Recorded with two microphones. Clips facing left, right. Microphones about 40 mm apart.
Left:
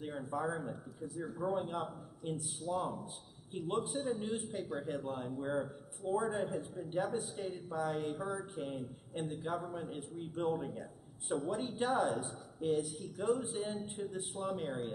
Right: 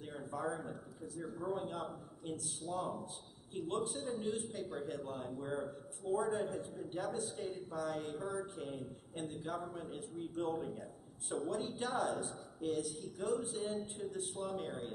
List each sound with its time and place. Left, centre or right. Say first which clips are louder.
0.3 s a man's voice: left 2 dB; centre
1.0 s speech: left 4 dB; left
1.5 s a man's voice: left 2 dB; centre
11.2 s a man's voice: left 2 dB; centre